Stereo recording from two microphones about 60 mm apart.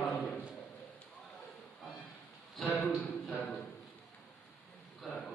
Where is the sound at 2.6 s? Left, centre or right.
Left.